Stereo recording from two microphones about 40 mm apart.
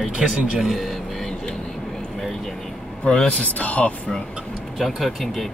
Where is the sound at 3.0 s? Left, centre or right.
Left.